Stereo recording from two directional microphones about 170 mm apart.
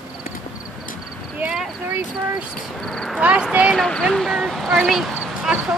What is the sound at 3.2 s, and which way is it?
A woman's voice, 5° right (ahead or behind).